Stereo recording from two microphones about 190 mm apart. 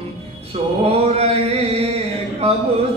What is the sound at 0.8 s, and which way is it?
Mantra, 30° right (ahead or behind).